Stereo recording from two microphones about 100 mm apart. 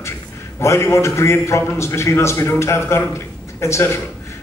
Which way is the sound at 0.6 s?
25° left (ahead or behind).